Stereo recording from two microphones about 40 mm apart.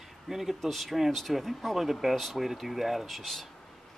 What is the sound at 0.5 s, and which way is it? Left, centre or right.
Speech, centre.